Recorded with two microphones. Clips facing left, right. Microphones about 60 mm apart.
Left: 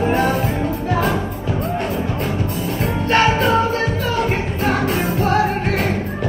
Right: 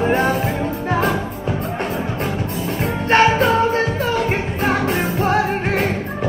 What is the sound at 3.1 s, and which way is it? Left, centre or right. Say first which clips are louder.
Music: right 2 dB; right.